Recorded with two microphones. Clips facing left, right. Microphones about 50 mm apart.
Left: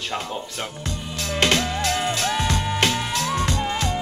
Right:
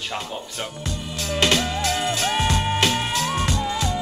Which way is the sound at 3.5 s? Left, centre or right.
Left.